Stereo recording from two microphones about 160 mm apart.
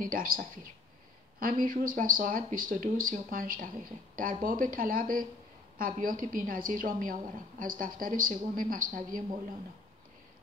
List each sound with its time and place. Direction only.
0.0 s speech: 60° right (ahead or behind)